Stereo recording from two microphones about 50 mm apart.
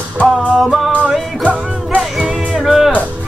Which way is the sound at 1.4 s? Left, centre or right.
Right.